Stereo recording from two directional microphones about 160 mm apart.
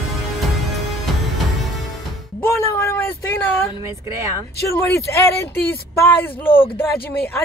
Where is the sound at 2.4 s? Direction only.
15° left (ahead or behind).